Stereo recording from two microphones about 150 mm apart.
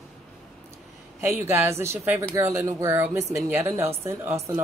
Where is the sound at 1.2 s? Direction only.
15° right (ahead or behind).